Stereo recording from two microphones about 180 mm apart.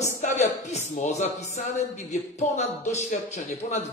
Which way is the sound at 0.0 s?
40° left (ahead or behind).